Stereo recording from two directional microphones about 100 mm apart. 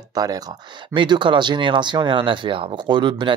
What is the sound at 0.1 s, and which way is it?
Speech, 40° right (ahead or behind).